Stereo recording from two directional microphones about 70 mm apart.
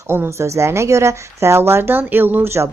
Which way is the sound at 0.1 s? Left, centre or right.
Right.